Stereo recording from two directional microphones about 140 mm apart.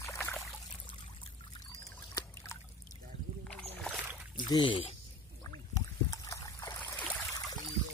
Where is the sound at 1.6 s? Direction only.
25° left (ahead or behind).